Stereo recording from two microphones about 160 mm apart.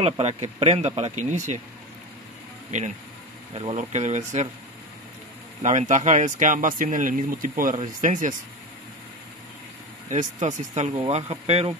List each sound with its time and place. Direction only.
0.0 s speech: 40° right (ahead or behind)
3.7 s speech: 45° right (ahead or behind)
5.6 s speech: 50° right (ahead or behind)
10.0 s speech: 50° right (ahead or behind)